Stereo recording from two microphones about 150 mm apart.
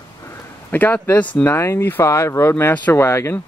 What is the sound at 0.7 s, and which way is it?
Speech, 10° left (ahead or behind).